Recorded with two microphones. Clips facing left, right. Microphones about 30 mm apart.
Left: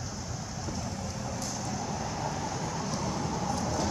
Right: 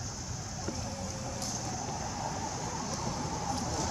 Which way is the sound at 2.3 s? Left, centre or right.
Left.